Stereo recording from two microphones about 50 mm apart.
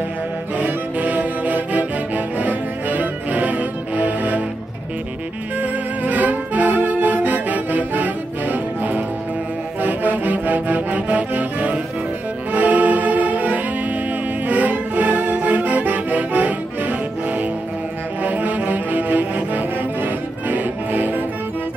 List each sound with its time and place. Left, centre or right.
0.6 s music: right
5.6 s saxophone: right
9.8 s music: right